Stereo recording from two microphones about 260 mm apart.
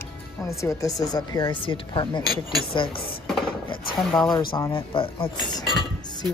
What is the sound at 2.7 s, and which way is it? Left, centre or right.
Speech, centre.